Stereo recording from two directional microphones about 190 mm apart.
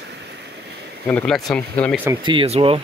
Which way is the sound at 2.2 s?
25° right (ahead or behind).